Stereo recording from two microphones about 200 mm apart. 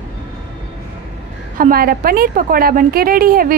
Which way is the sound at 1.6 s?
45° right (ahead or behind).